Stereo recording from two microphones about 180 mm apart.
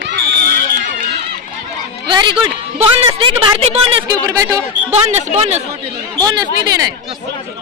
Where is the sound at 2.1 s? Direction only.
25° right (ahead or behind).